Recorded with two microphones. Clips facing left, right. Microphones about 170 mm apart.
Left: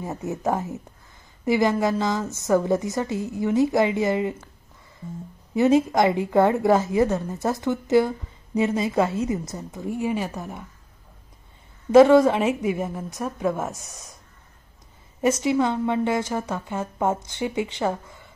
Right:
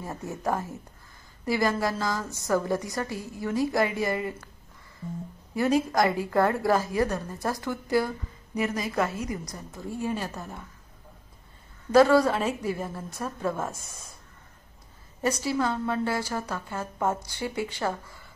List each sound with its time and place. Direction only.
0.0 s a woman's voice: 20° left (ahead or behind)
5.5 s a woman's voice: 20° left (ahead or behind)
11.9 s a woman's voice: 20° left (ahead or behind)
15.2 s a woman's voice: 20° left (ahead or behind)